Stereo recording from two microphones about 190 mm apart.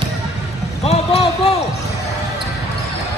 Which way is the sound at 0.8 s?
30° left (ahead or behind).